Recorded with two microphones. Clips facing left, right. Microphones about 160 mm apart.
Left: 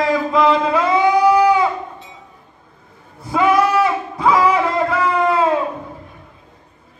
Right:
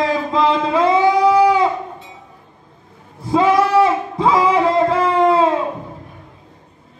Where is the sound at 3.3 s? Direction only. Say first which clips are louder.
Right 1 dB; 30° right (ahead or behind).